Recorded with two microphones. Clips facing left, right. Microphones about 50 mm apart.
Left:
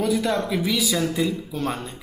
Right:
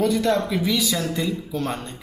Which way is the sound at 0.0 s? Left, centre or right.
Centre.